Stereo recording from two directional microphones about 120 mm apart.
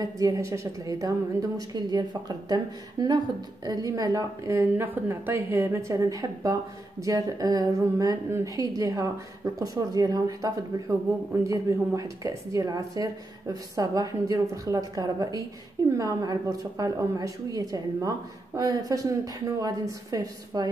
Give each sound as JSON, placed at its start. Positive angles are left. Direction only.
{"t": 0.0, "sound": "a woman's voice", "side_deg": -30}